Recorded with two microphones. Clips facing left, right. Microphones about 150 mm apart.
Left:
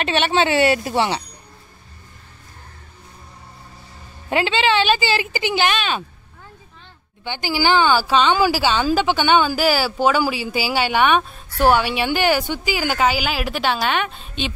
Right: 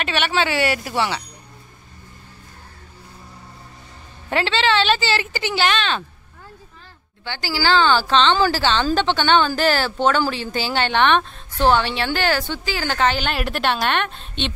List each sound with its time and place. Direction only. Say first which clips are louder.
0.0 s speech: left 3 dB; 25° left (ahead or behind)
4.3 s a woman's voice: left 1 dB; 15° left (ahead or behind)
7.2 s a woman's voice: left 2 dB; 20° left (ahead or behind)